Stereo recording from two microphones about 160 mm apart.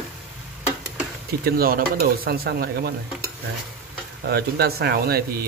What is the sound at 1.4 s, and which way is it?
Speech, 65° right (ahead or behind).